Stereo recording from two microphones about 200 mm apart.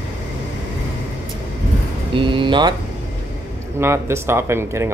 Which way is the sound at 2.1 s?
25° right (ahead or behind).